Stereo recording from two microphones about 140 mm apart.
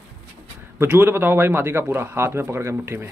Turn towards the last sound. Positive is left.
turn(degrees=-20)  # may be behind; listen again after turning